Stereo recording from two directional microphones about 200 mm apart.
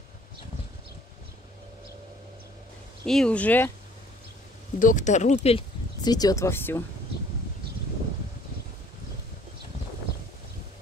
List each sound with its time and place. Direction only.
3.1 s speech: 5° left (ahead or behind)
4.7 s speech: 40° left (ahead or behind); by 6.8 s 10° left (ahead or behind)